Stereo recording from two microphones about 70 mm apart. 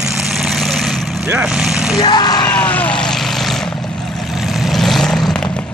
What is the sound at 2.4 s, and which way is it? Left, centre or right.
Vehicle, left.